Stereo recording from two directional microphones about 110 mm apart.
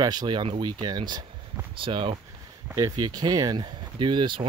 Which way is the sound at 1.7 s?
55° right (ahead or behind).